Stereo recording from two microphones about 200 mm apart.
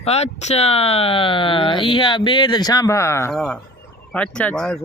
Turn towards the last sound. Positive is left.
turn(degrees=5)  # may be behind; listen again after turning